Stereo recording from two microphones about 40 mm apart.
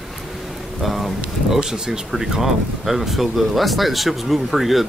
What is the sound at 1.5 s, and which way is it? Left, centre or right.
Speech, centre.